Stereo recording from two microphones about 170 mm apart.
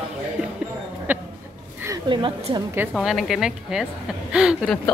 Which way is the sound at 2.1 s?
30° right (ahead or behind).